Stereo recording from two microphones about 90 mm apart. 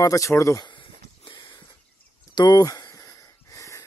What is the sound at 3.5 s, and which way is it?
Wheeze, 35° left (ahead or behind).